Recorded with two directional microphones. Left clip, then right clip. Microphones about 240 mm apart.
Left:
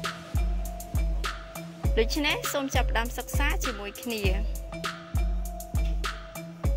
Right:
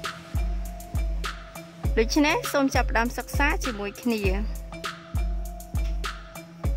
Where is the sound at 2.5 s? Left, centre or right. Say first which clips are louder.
Right 6 dB; right.